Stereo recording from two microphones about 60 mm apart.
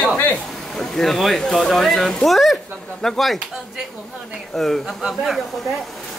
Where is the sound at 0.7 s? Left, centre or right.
Centre.